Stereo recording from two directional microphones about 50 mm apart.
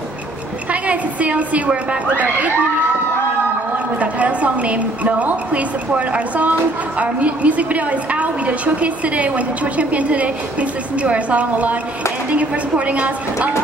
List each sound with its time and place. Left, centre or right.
0.7 s a woman's voice: right
4.0 s a woman's voice: right